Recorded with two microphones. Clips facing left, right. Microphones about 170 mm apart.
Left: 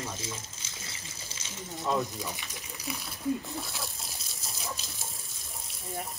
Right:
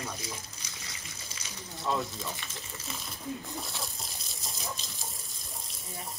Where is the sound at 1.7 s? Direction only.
20° left (ahead or behind).